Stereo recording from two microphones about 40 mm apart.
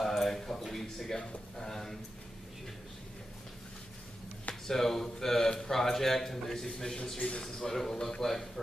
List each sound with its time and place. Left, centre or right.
0.0 s a sound: centre
4.6 s a man's voice: centre
7.2 s a man's voice: left
7.4 s a man's voice: centre